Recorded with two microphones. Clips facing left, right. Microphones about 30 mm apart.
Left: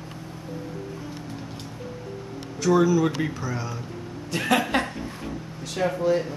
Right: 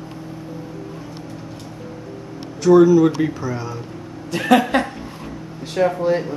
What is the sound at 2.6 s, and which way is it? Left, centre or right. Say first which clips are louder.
Speech: right 8 dB; centre.